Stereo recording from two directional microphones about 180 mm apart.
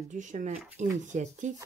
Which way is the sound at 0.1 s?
45° right (ahead or behind).